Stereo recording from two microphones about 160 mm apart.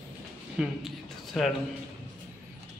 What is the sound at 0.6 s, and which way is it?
Speech, centre (ahead or behind).